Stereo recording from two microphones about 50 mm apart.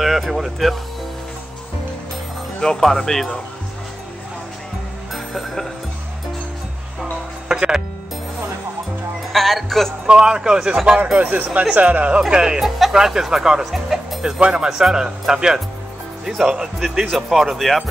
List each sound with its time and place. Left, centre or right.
0.0 s speech: centre
2.6 s speech: centre
5.1 s music: centre
7.0 s music: centre
9.3 s speech: centre
10.0 s speech: centre
11.1 s speech: right
12.3 s speech: centre
13.7 s music: centre
14.2 s speech: centre